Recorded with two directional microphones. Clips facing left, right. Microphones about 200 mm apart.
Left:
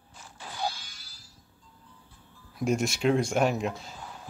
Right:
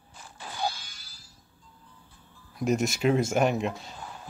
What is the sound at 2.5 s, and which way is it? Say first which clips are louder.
Speech: right 1 dB; centre (ahead or behind).